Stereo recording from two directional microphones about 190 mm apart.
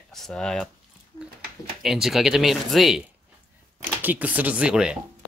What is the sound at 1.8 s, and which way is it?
Speech, centre (ahead or behind).